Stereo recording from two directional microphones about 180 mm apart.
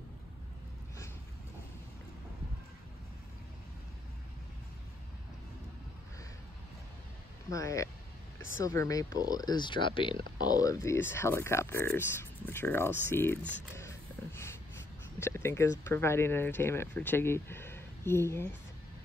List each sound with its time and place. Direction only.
7.4 s speech: 15° left (ahead or behind)
13.7 s snort: 15° left (ahead or behind)
15.1 s speech: 15° left (ahead or behind)